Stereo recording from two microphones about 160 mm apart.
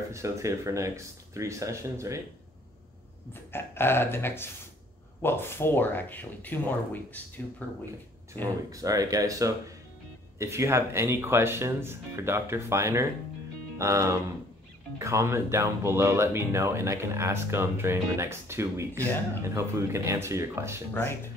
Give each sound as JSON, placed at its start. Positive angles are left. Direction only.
{"t": 0.1, "sound": "speech", "side_deg": -20}
{"t": 3.5, "sound": "speech", "side_deg": 15}
{"t": 8.7, "sound": "speech", "side_deg": -20}